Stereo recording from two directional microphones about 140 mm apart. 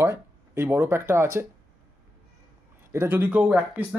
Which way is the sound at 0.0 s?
15° right (ahead or behind).